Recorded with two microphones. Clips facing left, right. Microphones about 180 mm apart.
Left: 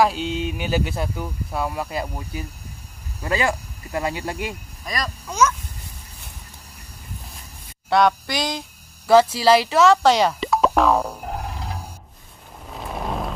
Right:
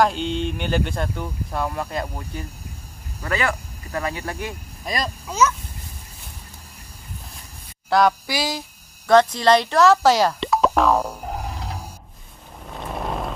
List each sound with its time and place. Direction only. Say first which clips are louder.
0.0 s speech: even; 5° left (ahead or behind)
3.2 s speech: left 2 dB; 15° left (ahead or behind)
4.8 s speech: right 2 dB; 25° right (ahead or behind)
5.2 s speech: even; 5° right (ahead or behind)
7.9 s speech: even; 5° right (ahead or behind)
9.0 s speech: left 1 dB; 5° left (ahead or behind)
12.6 s vehicle: even; centre (ahead or behind)